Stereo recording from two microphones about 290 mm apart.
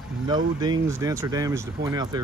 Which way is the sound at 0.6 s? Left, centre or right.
Centre.